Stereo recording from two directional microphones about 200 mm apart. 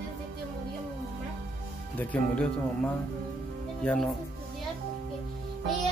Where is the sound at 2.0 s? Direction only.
5° left (ahead or behind).